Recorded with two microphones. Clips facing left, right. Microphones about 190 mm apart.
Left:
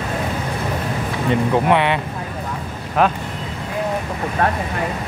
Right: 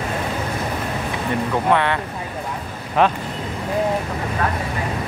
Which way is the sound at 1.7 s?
20° left (ahead or behind).